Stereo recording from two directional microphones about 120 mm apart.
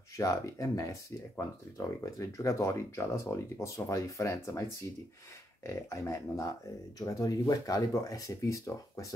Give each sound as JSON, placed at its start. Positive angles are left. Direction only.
{"t": 0.2, "sound": "speech", "side_deg": 25}
{"t": 5.7, "sound": "speech", "side_deg": 25}